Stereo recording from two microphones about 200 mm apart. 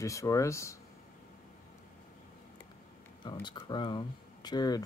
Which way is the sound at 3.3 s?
20° left (ahead or behind).